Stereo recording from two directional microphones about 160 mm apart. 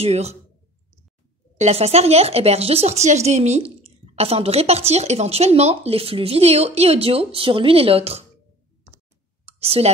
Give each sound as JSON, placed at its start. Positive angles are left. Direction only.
{"t": 0.0, "sound": "speech", "side_deg": -40}
{"t": 1.6, "sound": "speech", "side_deg": -40}
{"t": 9.6, "sound": "speech", "side_deg": -40}